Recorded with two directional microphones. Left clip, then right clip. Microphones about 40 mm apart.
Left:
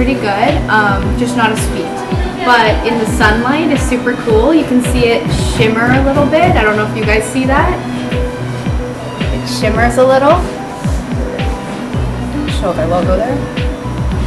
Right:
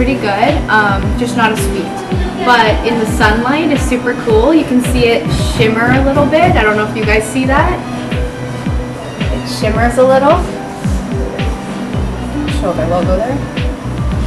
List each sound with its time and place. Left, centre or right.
0.0 s a woman's voice: centre
9.6 s a woman's voice: centre
12.6 s speech: centre